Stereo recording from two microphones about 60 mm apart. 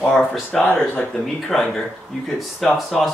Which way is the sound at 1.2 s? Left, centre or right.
Centre.